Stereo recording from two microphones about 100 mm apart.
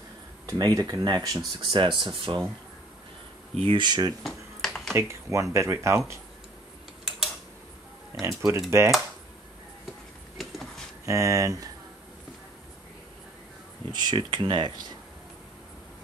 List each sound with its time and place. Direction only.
0.5 s speech: 35° right (ahead or behind)
2.0 s speech: 55° right (ahead or behind)
3.5 s speech: 70° right (ahead or behind)
3.8 s speech: 45° right (ahead or behind)
4.2 s finger snapping: 5° left (ahead or behind)
4.9 s speech: 30° right (ahead or behind)
8.1 s speech: 30° right (ahead or behind)
10.3 s a sound: centre (ahead or behind)
11.1 s speech: 30° right (ahead or behind)
13.9 s speech: 50° right (ahead or behind)